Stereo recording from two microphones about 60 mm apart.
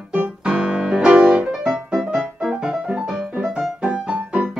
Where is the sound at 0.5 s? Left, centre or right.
Centre.